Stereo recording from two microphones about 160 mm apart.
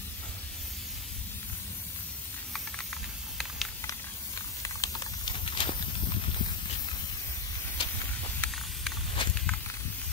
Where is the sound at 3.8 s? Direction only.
20° left (ahead or behind).